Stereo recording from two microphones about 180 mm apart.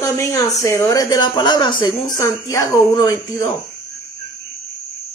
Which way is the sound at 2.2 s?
15° left (ahead or behind).